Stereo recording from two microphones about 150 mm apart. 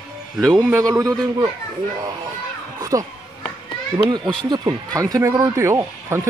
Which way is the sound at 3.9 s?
25° right (ahead or behind).